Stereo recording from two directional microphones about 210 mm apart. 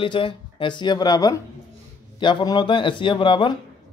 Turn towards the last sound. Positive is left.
turn(degrees=25)  # may be behind; listen again after turning